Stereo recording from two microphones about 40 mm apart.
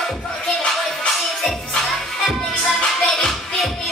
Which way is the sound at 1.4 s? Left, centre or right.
Centre.